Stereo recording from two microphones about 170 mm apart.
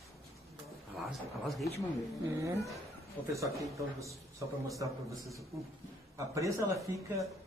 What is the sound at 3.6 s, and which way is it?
A man's voice, 20° right (ahead or behind).